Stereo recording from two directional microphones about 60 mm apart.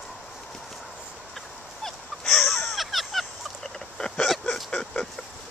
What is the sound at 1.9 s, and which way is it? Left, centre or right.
Fowl, centre.